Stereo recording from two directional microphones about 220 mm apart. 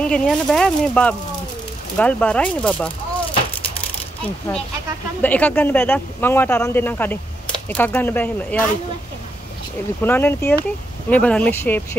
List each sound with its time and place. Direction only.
0.0 s speech: 5° left (ahead or behind)
5.2 s speech: 5° left (ahead or behind)
10.0 s speech: 10° left (ahead or behind)